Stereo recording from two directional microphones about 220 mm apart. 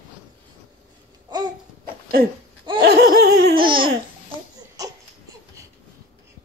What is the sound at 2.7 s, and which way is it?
Laughter, 45° right (ahead or behind).